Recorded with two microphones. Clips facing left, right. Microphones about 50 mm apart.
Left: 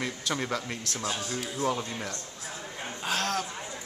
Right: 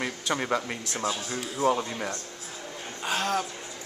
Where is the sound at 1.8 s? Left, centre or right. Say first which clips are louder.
Right 3 dB; centre.